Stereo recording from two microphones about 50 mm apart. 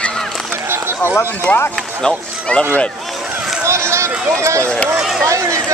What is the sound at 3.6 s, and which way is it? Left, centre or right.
Run, right.